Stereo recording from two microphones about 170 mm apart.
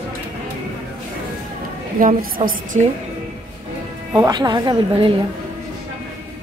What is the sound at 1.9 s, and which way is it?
Speech, 55° right (ahead or behind).